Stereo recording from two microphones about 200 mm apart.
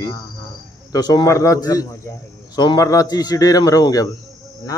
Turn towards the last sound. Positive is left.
turn(degrees=15)  # may be behind; listen again after turning